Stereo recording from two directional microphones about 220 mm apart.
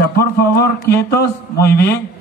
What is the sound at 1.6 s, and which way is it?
Speech, 45° left (ahead or behind).